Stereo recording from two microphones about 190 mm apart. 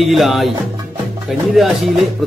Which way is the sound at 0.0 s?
Centre (ahead or behind).